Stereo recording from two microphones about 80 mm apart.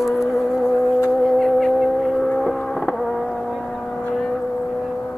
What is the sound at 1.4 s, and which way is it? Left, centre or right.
Foghorn, centre.